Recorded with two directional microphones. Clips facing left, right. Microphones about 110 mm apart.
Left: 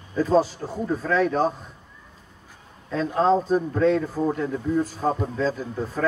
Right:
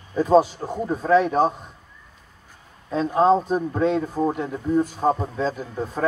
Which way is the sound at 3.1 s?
20° right (ahead or behind).